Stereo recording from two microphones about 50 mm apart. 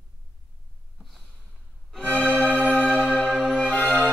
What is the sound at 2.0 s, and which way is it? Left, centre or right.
Music, right.